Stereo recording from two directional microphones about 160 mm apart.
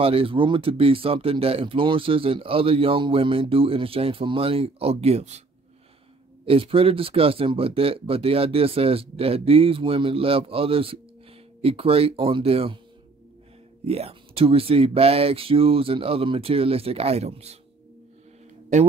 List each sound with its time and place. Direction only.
0.0 s speech: 35° right (ahead or behind)
6.4 s speech: 35° right (ahead or behind)
13.8 s speech: 40° right (ahead or behind)